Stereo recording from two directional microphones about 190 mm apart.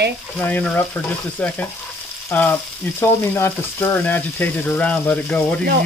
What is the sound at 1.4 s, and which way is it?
Frying, 5° left (ahead or behind).